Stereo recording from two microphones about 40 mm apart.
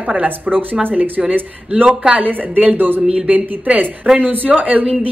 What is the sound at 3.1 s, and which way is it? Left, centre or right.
A woman's voice, right.